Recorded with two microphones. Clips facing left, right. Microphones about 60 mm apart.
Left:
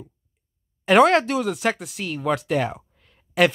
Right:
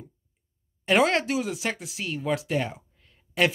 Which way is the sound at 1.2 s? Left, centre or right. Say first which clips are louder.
Left 5 dB; left.